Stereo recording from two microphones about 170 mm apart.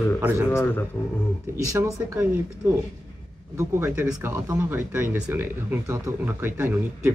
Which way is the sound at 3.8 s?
10° right (ahead or behind).